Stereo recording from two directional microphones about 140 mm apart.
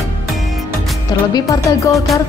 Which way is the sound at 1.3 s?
25° left (ahead or behind).